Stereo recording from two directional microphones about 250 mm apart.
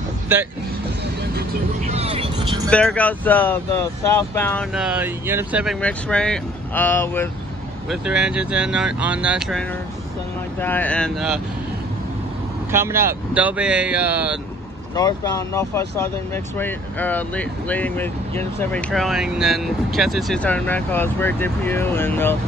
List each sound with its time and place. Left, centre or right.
1.9 s vehicle: right
2.7 s speech: centre
4.7 s speech: centre
7.9 s speech: centre
12.7 s speech: centre
15.0 s speech: centre